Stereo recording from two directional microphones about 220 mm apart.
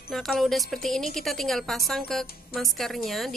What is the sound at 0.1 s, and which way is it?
A woman's voice, centre (ahead or behind).